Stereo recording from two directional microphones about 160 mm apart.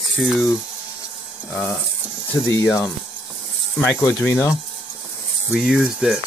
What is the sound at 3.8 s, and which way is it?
Speech, 10° left (ahead or behind).